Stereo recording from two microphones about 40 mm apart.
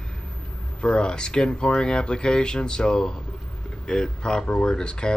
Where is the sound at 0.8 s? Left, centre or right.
Left.